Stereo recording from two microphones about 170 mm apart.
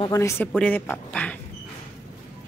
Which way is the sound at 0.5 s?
5° left (ahead or behind).